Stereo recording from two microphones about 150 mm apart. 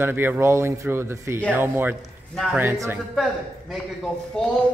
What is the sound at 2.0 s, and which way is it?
Speech, centre (ahead or behind).